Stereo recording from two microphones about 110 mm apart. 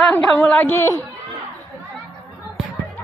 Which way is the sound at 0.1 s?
15° left (ahead or behind).